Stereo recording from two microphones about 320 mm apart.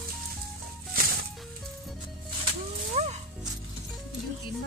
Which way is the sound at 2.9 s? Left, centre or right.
Centre.